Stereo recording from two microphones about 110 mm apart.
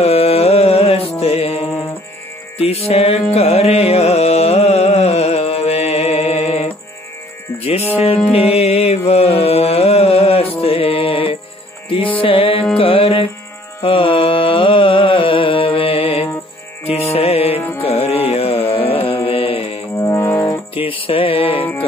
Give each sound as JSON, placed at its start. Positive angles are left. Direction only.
{"t": 0.0, "sound": "music", "side_deg": 65}
{"t": 2.9, "sound": "music", "side_deg": 65}
{"t": 8.3, "sound": "music", "side_deg": 65}
{"t": 17.6, "sound": "music", "side_deg": 20}
{"t": 17.8, "sound": "carnatic music", "side_deg": 70}
{"t": 19.2, "sound": "mantra", "side_deg": 55}
{"t": 20.0, "sound": "music", "side_deg": 25}
{"t": 20.7, "sound": "music", "side_deg": 55}